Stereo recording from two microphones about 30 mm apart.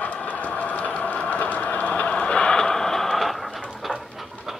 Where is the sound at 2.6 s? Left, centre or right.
Centre.